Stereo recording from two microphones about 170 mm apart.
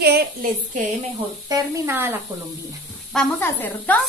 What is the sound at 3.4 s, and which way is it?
Speech, 10° left (ahead or behind).